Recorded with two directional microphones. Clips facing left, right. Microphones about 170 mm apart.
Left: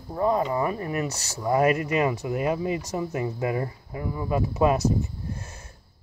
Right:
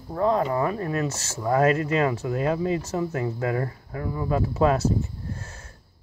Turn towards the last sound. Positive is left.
turn(degrees=15)  # may be behind; listen again after turning